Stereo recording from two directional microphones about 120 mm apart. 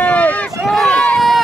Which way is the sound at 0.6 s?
Centre (ahead or behind).